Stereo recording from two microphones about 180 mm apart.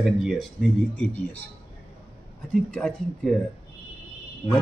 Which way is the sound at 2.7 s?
5° left (ahead or behind).